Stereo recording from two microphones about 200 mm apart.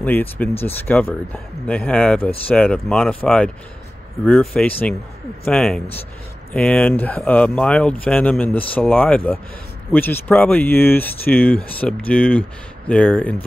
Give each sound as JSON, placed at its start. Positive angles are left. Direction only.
{"t": 0.0, "sound": "speech", "side_deg": 10}